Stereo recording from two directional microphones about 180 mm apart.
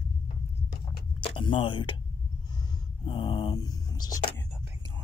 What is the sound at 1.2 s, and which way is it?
Speech, 25° left (ahead or behind).